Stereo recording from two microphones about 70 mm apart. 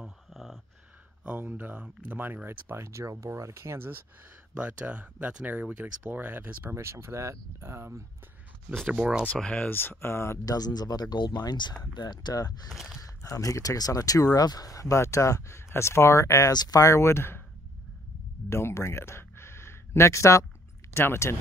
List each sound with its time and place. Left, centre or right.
0.0 s a sound: centre
1.2 s speech: right
2.7 s speech: right
4.6 s speech: right
8.7 s speech: centre
9.4 s speech: centre
9.7 s speech: left
10.4 s speech: left
12.6 s speech: centre
13.2 s speech: left
16.5 s speech: left
16.8 s speech: left
18.5 s speech: left